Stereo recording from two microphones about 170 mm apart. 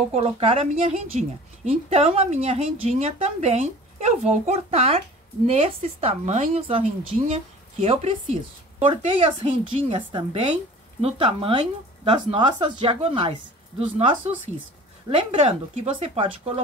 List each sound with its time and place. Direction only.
0.1 s speech: 35° right (ahead or behind)